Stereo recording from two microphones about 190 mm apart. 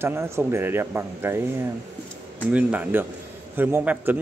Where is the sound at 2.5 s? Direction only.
5° right (ahead or behind).